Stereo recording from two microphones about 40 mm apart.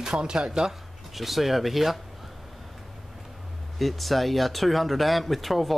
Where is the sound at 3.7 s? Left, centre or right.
Centre.